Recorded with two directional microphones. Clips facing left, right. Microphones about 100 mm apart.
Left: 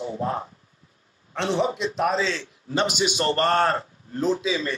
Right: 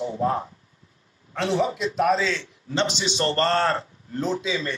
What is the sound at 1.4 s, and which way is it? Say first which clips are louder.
A man's voice: even; 30° left (ahead or behind).